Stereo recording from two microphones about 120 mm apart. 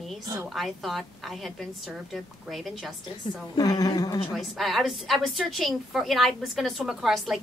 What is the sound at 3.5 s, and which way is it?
Speech, 30° left (ahead or behind).